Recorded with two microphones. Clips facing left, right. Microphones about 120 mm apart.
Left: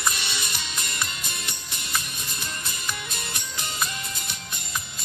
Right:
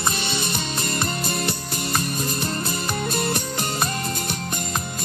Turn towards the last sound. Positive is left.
turn(degrees=-45)  # may be behind; listen again after turning